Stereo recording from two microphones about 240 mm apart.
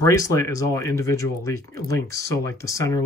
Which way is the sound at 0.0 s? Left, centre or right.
Centre.